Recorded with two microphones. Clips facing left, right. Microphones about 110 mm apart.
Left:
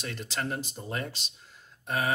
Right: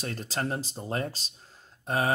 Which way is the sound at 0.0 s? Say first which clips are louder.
Right 2 dB; 40° right (ahead or behind).